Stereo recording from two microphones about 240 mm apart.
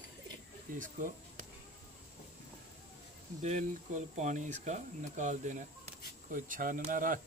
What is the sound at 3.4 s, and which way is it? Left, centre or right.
Speech, right.